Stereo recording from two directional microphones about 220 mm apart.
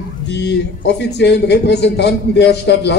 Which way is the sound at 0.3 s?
50° left (ahead or behind).